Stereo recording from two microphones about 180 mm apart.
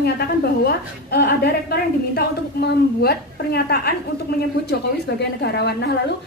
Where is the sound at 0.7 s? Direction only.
60° left (ahead or behind).